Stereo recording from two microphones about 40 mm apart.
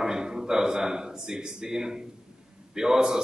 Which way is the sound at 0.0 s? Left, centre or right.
Centre.